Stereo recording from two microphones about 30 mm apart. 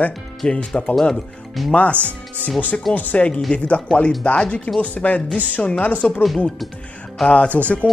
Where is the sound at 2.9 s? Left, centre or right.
Left.